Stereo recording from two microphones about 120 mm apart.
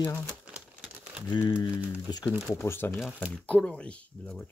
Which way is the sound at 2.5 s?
20° left (ahead or behind).